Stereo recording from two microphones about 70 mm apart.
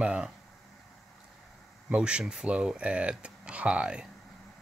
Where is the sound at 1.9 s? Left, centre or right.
Centre.